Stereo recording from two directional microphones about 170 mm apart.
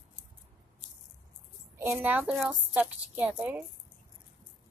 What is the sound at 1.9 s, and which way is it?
A woman's voice, 5° right (ahead or behind).